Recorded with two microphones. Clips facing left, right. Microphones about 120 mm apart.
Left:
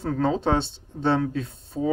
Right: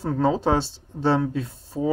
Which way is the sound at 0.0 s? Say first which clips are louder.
Right 2 dB; 15° right (ahead or behind).